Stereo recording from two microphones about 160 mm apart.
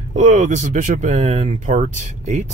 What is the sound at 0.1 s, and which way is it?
Speech, 50° right (ahead or behind).